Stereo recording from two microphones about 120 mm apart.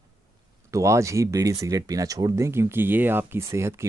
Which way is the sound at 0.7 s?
25° right (ahead or behind).